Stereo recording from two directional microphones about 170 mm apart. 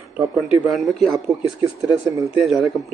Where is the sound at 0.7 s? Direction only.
Centre (ahead or behind).